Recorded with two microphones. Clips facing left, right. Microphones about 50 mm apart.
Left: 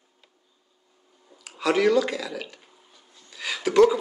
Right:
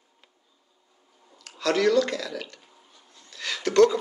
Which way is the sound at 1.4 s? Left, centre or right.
Centre.